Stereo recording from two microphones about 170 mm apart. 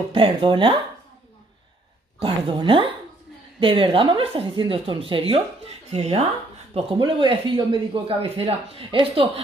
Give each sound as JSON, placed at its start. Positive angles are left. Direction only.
{"t": 0.1, "sound": "speech", "side_deg": -30}
{"t": 2.2, "sound": "a woman's voice", "side_deg": -30}